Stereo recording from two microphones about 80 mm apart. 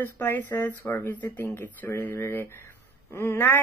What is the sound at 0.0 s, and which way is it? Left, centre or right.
Speech, left.